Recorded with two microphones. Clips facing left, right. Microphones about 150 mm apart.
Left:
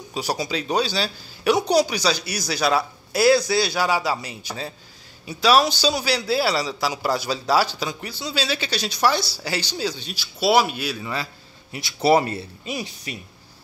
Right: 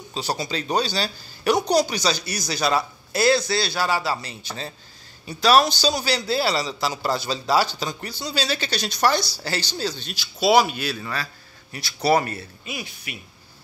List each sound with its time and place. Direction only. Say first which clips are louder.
0.1 s a man's voice: left 2 dB; 10° left (ahead or behind)
11.7 s speech: left 2 dB; 20° left (ahead or behind)